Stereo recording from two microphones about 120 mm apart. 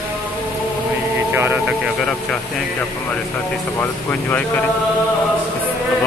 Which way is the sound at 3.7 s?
15° left (ahead or behind).